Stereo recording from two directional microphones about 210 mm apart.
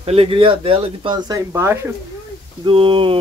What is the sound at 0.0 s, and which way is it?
Speech, 30° right (ahead or behind).